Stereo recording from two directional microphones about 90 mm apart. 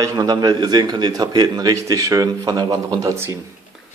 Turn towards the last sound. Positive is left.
turn(degrees=-45)  # may be behind; listen again after turning